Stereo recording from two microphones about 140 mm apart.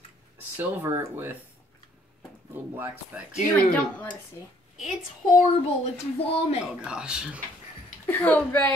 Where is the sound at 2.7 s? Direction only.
15° right (ahead or behind).